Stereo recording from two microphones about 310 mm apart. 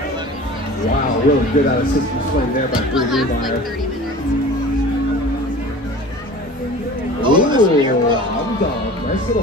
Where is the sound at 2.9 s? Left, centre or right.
Centre.